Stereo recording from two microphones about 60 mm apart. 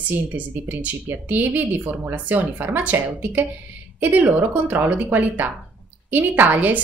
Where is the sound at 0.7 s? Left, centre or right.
Right.